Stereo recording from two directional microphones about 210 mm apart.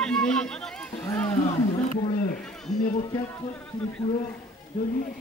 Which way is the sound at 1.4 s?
40° left (ahead or behind).